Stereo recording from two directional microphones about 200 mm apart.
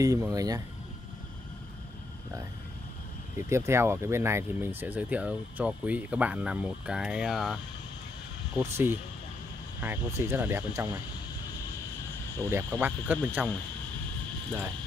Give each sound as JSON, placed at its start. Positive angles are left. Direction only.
{"t": 0.0, "sound": "speech", "side_deg": -15}
{"t": 3.3, "sound": "speech", "side_deg": -15}
{"t": 8.5, "sound": "speech", "side_deg": -10}
{"t": 12.4, "sound": "speech", "side_deg": -10}